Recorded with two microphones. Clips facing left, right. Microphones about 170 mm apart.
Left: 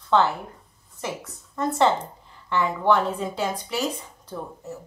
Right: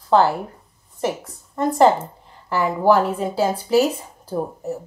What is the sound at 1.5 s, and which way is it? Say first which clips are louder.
A woman's voice: right 6 dB; 30° right (ahead or behind).